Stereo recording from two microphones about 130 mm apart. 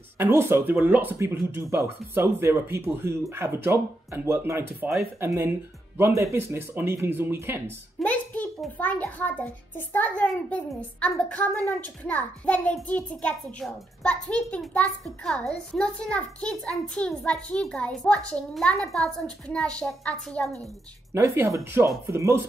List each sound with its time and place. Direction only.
0.2 s speech: 20° right (ahead or behind)
7.6 s a woman's voice: 10° left (ahead or behind)
21.1 s speech: 25° right (ahead or behind)